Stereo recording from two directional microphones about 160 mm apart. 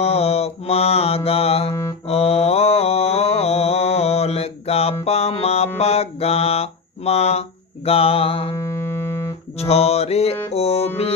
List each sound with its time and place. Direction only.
0.0 s mantra: 40° left (ahead or behind)
5.0 s music: 40° left (ahead or behind)
5.8 s mantra: 40° left (ahead or behind)
8.6 s music: 15° left (ahead or behind)
9.6 s mantra: 40° left (ahead or behind)
10.5 s music: 40° left (ahead or behind)